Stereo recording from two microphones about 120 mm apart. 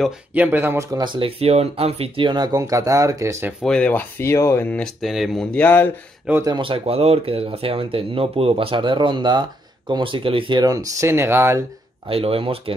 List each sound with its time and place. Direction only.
0.3 s speech: 15° right (ahead or behind)
0.9 s speech: 40° right (ahead or behind); by 2.2 s 55° right (ahead or behind)
2.2 s speech: 40° right (ahead or behind)
3.6 s speech: 10° left (ahead or behind)
5.0 s speech: centre (ahead or behind)
5.5 s speech: 10° left (ahead or behind)
6.4 s speech: 40° right (ahead or behind)
10.7 s speech: 30° right (ahead or behind)
12.1 s speech: 50° right (ahead or behind)